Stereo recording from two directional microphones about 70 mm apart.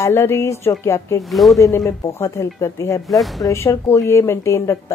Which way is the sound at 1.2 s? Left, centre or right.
Centre.